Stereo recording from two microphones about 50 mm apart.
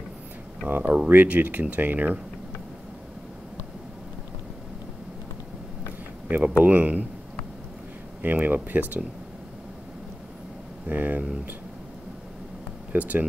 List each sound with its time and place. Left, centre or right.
0.7 s speech: right
6.2 s speech: right
8.2 s speech: right
10.9 s speech: right
12.9 s speech: right